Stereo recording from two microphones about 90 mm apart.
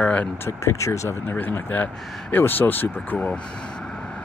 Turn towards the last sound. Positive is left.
turn(degrees=20)  # may be behind; listen again after turning